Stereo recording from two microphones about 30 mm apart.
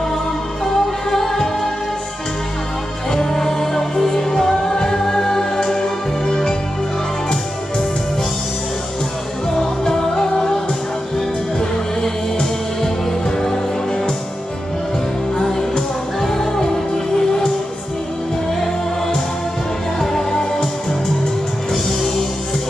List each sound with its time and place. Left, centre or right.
0.7 s music: centre
3.1 s music: centre
9.6 s music: left
12.0 s music: centre
16.2 s music: centre
20.0 s music: centre